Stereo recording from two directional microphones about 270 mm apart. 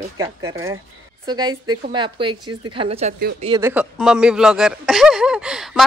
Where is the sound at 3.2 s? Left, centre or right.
Right.